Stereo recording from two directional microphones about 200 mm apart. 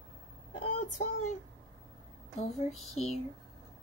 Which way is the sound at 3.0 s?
35° left (ahead or behind).